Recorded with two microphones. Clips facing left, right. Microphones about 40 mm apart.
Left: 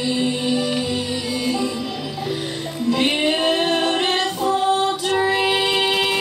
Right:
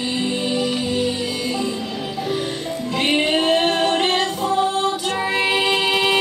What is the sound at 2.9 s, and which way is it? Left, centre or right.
Music, right.